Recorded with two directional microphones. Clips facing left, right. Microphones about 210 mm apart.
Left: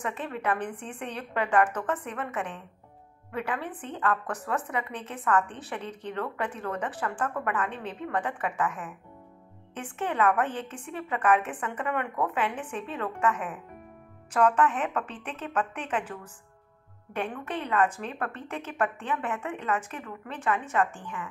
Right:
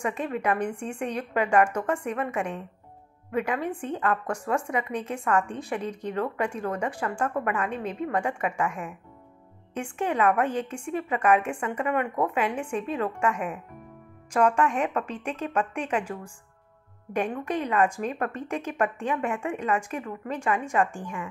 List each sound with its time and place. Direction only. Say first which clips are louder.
0.0 s a woman's voice: right 4 dB; 10° right (ahead or behind)